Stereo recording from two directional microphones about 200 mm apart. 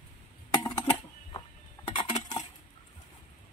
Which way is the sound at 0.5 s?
20° left (ahead or behind).